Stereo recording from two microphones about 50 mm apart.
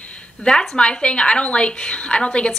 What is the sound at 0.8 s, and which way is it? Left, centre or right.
A woman's voice, centre.